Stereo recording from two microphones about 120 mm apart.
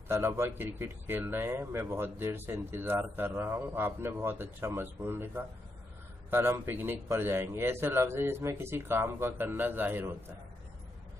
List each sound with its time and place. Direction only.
0.1 s a man's voice: 20° right (ahead or behind)